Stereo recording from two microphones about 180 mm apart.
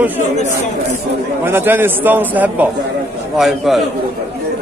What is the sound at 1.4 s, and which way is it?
A man's voice, 10° right (ahead or behind).